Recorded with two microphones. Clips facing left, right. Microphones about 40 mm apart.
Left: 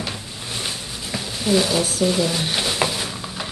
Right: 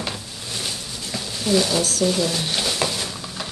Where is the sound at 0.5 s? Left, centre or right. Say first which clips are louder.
Left 1 dB; centre.